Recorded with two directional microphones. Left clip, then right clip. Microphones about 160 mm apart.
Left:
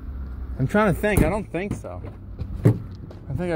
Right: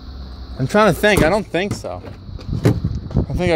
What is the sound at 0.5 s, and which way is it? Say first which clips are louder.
Vehicle: right 6 dB; 15° right (ahead or behind).